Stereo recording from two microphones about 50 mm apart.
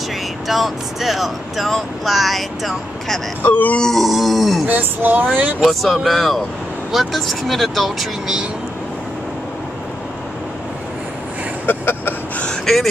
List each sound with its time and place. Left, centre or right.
0.5 s speech: centre
3.4 s speech: left
3.8 s speech: centre
4.6 s speech: right
5.6 s speech: centre
11.6 s a sound: left
12.6 s speech: centre